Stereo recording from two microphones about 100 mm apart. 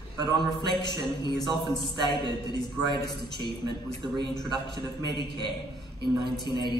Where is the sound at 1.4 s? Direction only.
Centre (ahead or behind).